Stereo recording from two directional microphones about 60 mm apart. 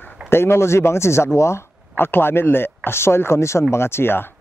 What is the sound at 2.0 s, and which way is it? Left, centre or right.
Speech, left.